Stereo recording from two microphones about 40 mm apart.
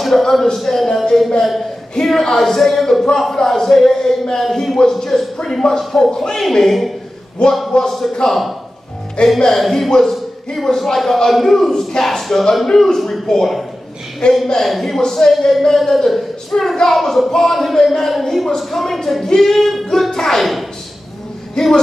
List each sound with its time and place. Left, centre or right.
0.0 s speech: centre
7.4 s a man's voice: left
7.7 s speech: centre
9.2 s a man's voice: left
9.6 s speech: centre
14.2 s a man's voice: left
14.7 s a woman's voice: centre
16.5 s speech: centre
16.9 s speech: centre
21.6 s speech: centre